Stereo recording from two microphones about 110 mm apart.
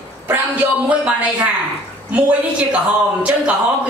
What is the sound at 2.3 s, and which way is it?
A man's voice, 10° right (ahead or behind).